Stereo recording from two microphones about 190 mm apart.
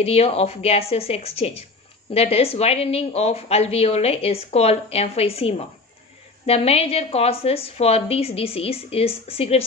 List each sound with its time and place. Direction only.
0.0 s speech: 30° left (ahead or behind)